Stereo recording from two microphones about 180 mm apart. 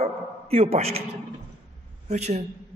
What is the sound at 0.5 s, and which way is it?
Speech, 35° right (ahead or behind).